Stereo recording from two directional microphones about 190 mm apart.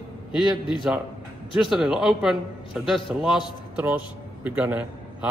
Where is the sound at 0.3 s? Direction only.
Centre (ahead or behind).